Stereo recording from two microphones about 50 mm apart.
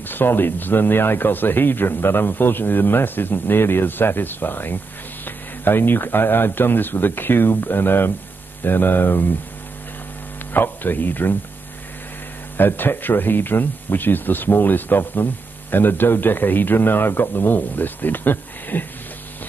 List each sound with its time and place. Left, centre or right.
0.1 s speech: left
10.5 s speech: left
12.5 s speech: left